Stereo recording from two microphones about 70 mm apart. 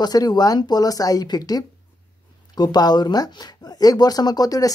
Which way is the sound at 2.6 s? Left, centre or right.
Left.